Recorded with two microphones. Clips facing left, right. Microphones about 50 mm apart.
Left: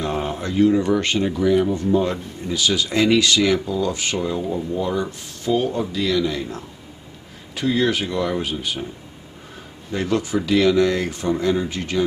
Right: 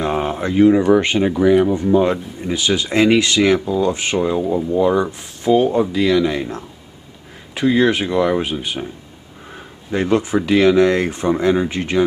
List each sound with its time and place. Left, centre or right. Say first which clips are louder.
0.0 s a sound: right 5 dB; right
0.8 s speech: right 6 dB; centre
9.9 s speech: right 5 dB; right